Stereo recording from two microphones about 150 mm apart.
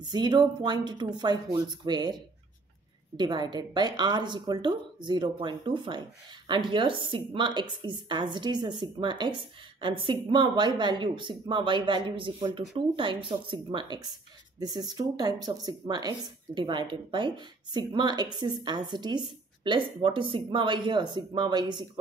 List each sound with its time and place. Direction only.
0.1 s speech: 30° right (ahead or behind)